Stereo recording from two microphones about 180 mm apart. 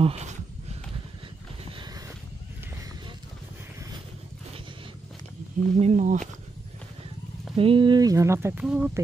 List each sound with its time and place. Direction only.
0.0 s a sound: 35° right (ahead or behind)
1.7 s boat: 25° right (ahead or behind)
5.8 s speech: 40° right (ahead or behind)
7.5 s speech: 30° right (ahead or behind); by 8.9 s 5° right (ahead or behind)